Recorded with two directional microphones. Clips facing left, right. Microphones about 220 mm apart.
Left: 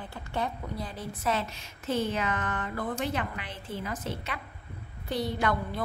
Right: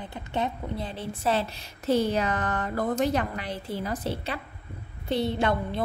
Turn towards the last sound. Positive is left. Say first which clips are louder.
# right 3 dB
turn(degrees=-25)  # may be behind; listen again after turning